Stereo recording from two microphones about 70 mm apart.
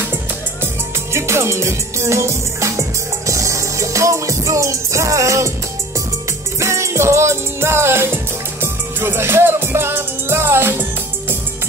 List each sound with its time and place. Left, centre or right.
1.1 s music: right
6.6 s music: right